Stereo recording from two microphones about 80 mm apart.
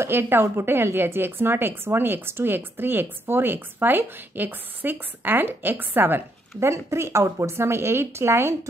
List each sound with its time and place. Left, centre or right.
0.0 s a woman's voice: right